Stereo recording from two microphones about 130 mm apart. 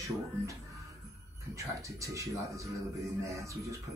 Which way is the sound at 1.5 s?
25° right (ahead or behind).